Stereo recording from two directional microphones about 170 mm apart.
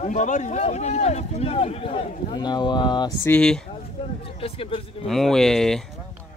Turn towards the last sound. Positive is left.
turn(degrees=5)  # may be behind; listen again after turning